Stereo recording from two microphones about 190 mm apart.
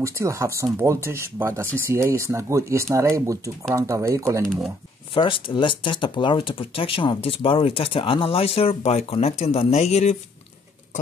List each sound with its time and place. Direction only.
0.0 s speech: 15° right (ahead or behind)
5.1 s speech: 25° left (ahead or behind)